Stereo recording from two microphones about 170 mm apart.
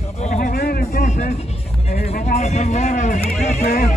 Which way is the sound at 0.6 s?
60° left (ahead or behind).